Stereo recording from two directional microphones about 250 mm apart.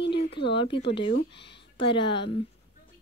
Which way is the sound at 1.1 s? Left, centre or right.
Left.